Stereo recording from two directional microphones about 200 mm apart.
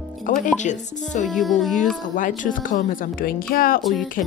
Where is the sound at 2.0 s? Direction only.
40° left (ahead or behind).